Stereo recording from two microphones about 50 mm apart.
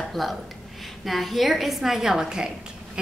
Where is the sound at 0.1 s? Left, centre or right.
Centre.